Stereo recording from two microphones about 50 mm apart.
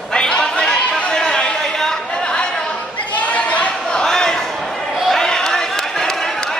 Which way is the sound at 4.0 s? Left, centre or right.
Centre.